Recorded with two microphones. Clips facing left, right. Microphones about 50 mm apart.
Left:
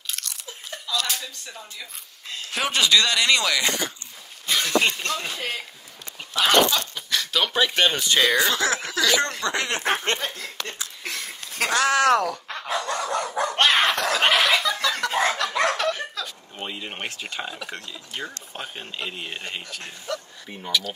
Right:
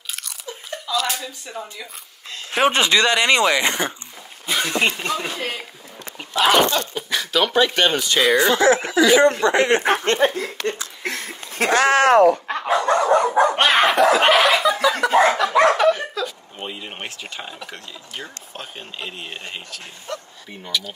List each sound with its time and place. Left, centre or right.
0.0 s biting: centre
1.0 s speech: centre
2.5 s speech: right; by 6.9 s centre
6.9 s speech: centre
7.3 s speech: centre
7.8 s speech: centre
8.4 s speech: right
10.1 s a sound: right
13.6 s snicker: centre
17.7 s speech: centre